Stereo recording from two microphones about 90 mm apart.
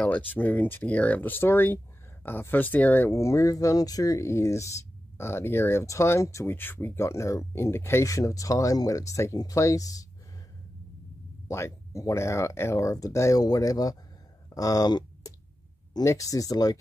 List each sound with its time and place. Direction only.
0.0 s speech: 20° left (ahead or behind); by 10.0 s 40° left (ahead or behind)
11.4 s speech: 35° left (ahead or behind)